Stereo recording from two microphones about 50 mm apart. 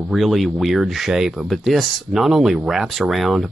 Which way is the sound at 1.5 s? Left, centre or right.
Centre.